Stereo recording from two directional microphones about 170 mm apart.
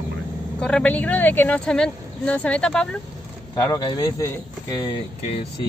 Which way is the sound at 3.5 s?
20° left (ahead or behind).